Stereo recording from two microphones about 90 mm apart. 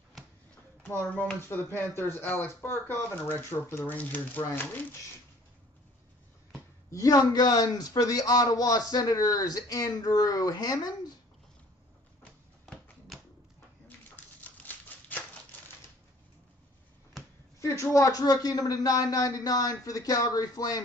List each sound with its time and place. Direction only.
0.8 s speech: 20° left (ahead or behind)
6.9 s a man's voice: 40° left (ahead or behind)
13.1 s a sound: centre (ahead or behind)
14.4 s typewriter: 20° left (ahead or behind)
17.6 s a sound: 30° left (ahead or behind)
17.9 s a man's voice: 40° left (ahead or behind)